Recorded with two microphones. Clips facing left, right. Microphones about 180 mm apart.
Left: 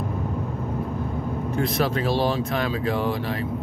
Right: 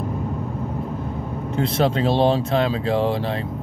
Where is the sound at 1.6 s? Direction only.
25° right (ahead or behind).